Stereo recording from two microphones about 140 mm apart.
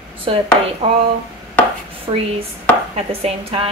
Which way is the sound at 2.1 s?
35° right (ahead or behind).